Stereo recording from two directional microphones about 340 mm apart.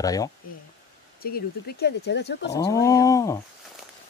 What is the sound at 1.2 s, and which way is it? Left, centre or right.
Speech, left.